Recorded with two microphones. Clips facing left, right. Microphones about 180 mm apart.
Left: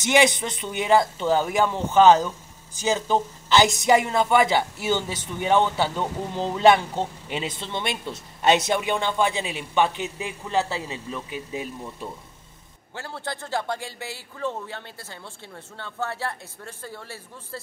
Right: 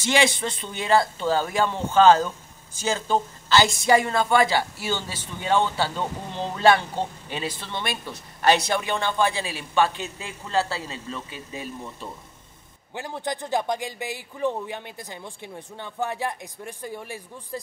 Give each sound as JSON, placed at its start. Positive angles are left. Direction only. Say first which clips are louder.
{"t": 0.0, "sound": "speech", "louder": "left 2 dB", "side_deg": 20}
{"t": 12.9, "sound": "a man's voice", "louder": "right 3 dB", "side_deg": -15}